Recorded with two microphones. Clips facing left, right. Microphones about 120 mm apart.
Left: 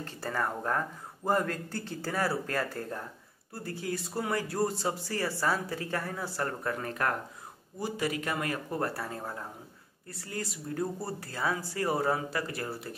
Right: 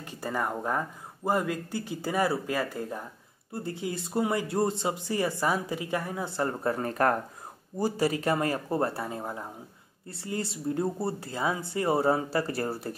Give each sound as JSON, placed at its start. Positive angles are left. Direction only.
{"t": 0.0, "sound": "speech", "side_deg": -15}
{"t": 6.7, "sound": "speech", "side_deg": -35}